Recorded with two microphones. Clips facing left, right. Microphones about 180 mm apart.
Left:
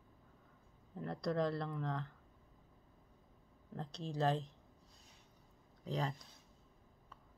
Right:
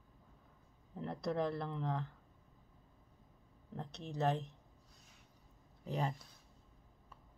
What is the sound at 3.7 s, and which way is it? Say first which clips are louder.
Speech: left 1 dB; 20° right (ahead or behind).